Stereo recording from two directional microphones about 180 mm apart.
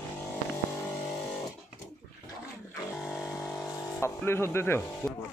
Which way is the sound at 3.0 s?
Centre (ahead or behind).